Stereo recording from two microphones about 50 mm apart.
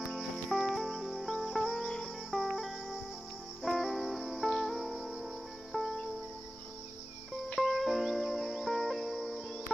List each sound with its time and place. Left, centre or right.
0.1 s music: centre
2.4 s cricket: centre
3.6 s music: centre
7.5 s music: centre